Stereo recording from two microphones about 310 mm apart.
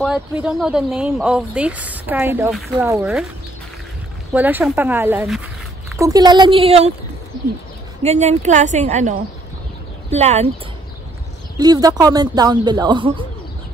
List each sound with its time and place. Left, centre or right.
0.0 s speech: centre
4.3 s speech: centre
8.0 s speech: right
10.1 s speech: right
11.5 s speech: centre